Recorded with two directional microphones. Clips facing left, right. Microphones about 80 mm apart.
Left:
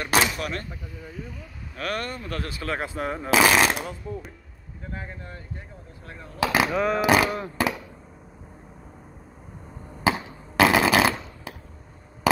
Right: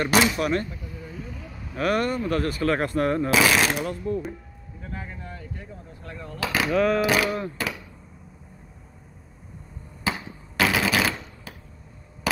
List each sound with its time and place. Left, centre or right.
0.0 s speech: centre
1.8 s speech: centre
3.3 s speech: left
3.8 s speech: centre
6.4 s speech: centre
10.6 s a sound: left